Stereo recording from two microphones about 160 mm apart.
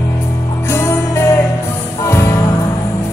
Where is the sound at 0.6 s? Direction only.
15° left (ahead or behind).